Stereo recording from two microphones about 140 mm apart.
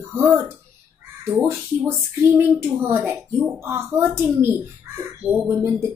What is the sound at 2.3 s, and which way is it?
Speech, 15° right (ahead or behind).